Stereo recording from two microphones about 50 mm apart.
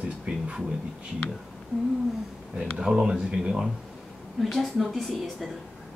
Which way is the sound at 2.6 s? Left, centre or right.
Centre.